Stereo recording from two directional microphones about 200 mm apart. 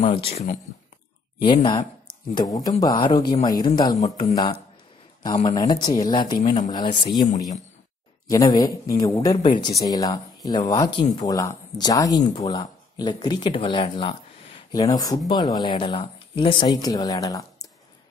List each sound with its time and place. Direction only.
0.0 s speech: 30° left (ahead or behind)